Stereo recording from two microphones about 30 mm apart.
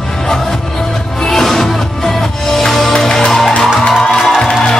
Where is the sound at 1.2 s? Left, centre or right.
Centre.